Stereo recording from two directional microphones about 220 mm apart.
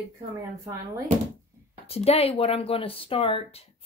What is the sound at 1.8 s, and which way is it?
Speech, 25° left (ahead or behind).